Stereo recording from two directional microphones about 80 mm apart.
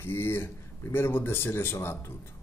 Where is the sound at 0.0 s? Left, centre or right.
Left.